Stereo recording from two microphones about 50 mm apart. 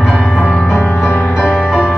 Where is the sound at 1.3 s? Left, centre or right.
Centre.